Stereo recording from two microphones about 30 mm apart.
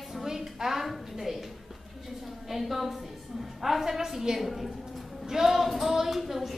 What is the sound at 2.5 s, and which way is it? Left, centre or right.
A woman's voice, centre.